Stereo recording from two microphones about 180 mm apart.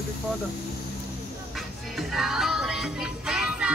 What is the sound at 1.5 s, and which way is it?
Music, centre (ahead or behind).